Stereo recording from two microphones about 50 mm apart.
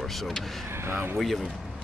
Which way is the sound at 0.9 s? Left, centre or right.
Right.